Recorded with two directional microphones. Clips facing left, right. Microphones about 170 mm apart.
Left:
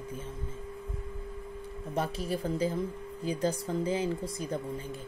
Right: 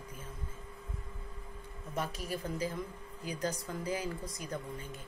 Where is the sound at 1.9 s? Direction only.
30° left (ahead or behind).